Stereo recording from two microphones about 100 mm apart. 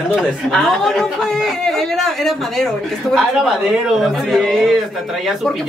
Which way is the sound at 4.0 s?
Centre (ahead or behind).